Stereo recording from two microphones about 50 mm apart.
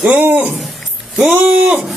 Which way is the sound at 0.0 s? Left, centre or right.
Right.